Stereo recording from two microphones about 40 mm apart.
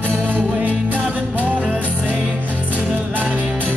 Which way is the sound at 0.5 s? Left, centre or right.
Right.